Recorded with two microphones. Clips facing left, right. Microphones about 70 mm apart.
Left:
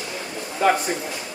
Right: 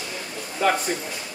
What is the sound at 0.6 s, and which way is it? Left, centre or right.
Speech, centre.